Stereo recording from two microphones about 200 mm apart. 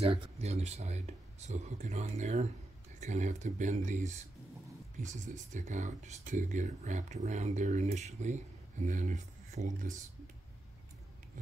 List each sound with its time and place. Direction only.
0.0 s speech: 30° right (ahead or behind)
5.2 s speech: 35° right (ahead or behind)